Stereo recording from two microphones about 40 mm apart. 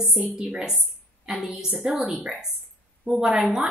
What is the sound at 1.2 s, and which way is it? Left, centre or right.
Speech, centre.